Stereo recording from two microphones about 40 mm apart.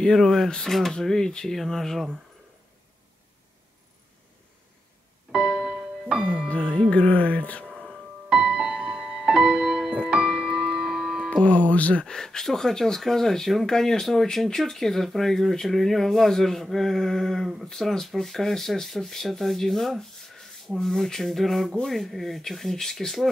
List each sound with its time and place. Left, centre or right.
0.2 s speech: centre
0.9 s speech: centre
5.3 s music: right
6.5 s speech: left
7.6 s a sound: right
8.3 s music: right
11.4 s speech: left
12.1 s speech: centre